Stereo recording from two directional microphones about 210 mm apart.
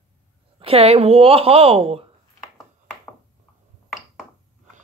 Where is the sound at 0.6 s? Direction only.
30° right (ahead or behind).